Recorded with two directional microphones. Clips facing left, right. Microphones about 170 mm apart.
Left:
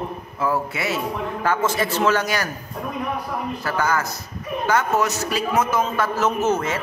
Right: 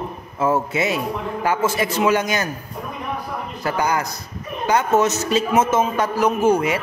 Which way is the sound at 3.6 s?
15° right (ahead or behind).